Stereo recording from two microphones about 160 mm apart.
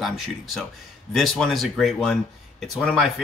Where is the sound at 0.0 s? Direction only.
Centre (ahead or behind).